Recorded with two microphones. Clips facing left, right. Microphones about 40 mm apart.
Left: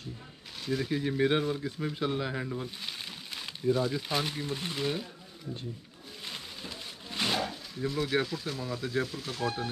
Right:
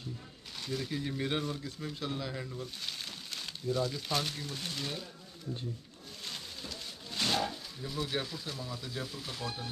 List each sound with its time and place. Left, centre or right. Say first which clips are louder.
0.7 s speech: left 6 dB; centre
2.8 s speech: left 2 dB; centre
6.2 s a sound: left 2 dB; centre
7.8 s speech: left 7 dB; centre
9.4 s speech: left 9 dB; left